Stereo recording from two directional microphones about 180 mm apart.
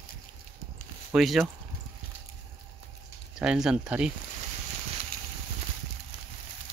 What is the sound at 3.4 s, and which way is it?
Speech, 5° right (ahead or behind).